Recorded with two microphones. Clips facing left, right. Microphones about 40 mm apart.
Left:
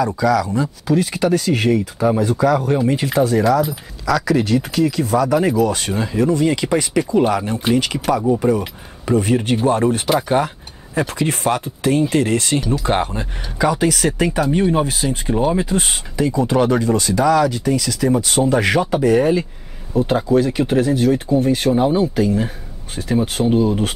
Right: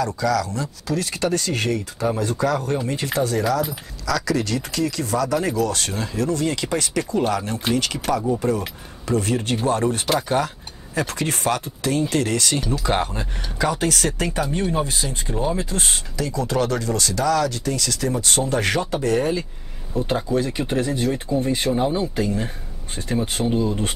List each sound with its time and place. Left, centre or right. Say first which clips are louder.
0.2 s speech: left 6 dB; centre
12.5 s speech: left 4 dB; centre
21.8 s speech: left 6 dB; left
22.1 s speech: left 6 dB; centre
23.5 s speech: left 7 dB; left